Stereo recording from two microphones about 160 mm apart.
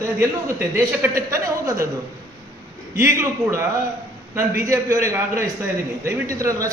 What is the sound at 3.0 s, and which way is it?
A man's voice, 15° right (ahead or behind).